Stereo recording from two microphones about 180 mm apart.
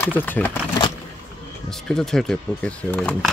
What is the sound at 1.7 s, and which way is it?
Speech, 5° left (ahead or behind).